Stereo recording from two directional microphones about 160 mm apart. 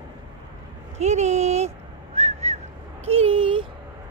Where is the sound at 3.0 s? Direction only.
35° right (ahead or behind).